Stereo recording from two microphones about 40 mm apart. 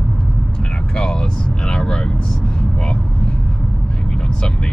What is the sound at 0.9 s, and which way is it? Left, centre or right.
Speech, centre.